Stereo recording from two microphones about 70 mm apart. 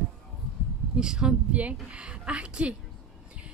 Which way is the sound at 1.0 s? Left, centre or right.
Centre.